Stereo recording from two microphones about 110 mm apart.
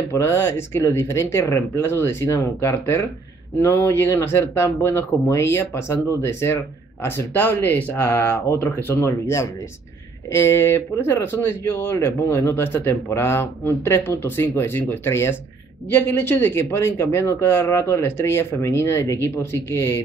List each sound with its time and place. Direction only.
0.1 s a man's voice: 25° left (ahead or behind)